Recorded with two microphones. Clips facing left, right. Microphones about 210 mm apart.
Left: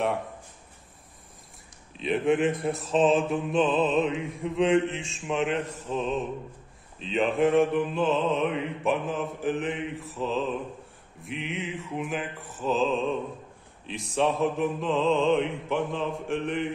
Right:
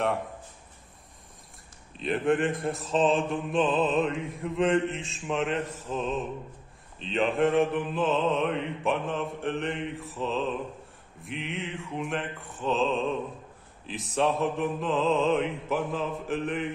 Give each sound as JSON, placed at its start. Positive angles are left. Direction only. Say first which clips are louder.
{"t": 2.0, "sound": "mantra", "louder": "left 1 dB", "side_deg": 0}
{"t": 7.0, "sound": "mantra", "louder": "left 1 dB", "side_deg": 0}